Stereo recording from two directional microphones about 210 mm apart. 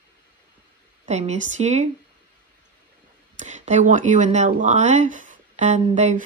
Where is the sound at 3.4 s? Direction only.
35° right (ahead or behind).